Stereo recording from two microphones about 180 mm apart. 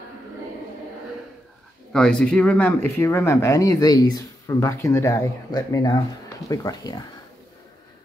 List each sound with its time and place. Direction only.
1.9 s speech: 5° left (ahead or behind); by 7.0 s 20° left (ahead or behind)